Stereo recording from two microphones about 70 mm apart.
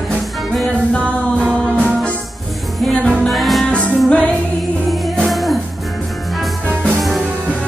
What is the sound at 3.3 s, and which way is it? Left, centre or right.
Music, centre.